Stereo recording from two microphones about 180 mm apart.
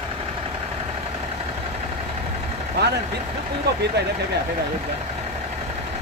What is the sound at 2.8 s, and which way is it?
Vehicle, 65° right (ahead or behind).